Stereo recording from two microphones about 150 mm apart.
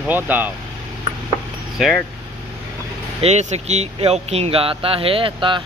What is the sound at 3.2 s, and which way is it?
Speech, 45° right (ahead or behind).